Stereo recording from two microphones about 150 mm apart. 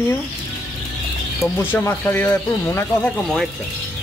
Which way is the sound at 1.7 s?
15° left (ahead or behind).